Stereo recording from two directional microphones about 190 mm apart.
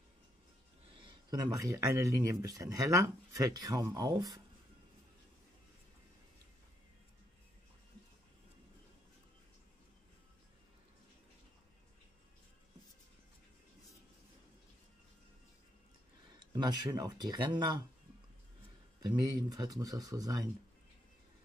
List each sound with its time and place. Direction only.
0.9 s speech: 20° right (ahead or behind)
16.3 s speech: 20° right (ahead or behind)
19.0 s speech: 20° right (ahead or behind)